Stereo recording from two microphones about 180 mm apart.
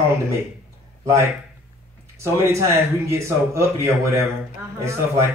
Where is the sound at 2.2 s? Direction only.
15° right (ahead or behind).